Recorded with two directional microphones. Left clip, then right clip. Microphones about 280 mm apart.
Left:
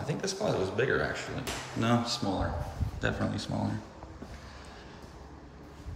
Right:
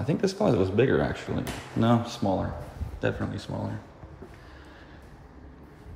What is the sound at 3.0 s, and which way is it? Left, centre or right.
Speech, centre.